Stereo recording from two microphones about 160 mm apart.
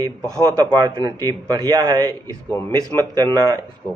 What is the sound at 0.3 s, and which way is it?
A man's voice, 20° right (ahead or behind).